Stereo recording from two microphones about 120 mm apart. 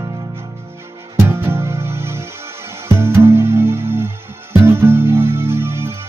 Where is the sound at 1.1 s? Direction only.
20° right (ahead or behind).